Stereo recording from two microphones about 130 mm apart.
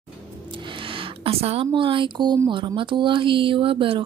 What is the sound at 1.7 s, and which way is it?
Speech, 40° right (ahead or behind).